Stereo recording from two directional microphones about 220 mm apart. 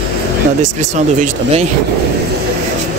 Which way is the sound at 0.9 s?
30° right (ahead or behind).